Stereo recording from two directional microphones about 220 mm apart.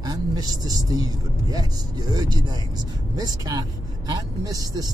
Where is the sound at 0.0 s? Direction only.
15° right (ahead or behind).